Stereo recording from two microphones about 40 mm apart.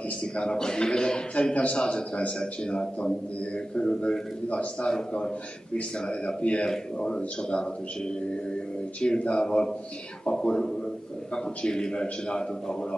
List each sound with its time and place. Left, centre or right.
0.4 s a man's voice: centre
1.5 s a man's voice: left
1.8 s a man's voice: left